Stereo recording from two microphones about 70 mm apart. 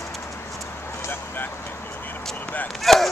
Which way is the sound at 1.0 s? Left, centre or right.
Left.